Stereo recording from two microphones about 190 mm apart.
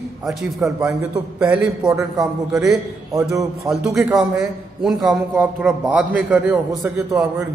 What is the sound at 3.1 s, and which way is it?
Speech, 15° right (ahead or behind).